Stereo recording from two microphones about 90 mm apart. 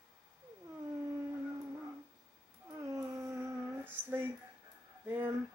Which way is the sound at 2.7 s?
35° right (ahead or behind).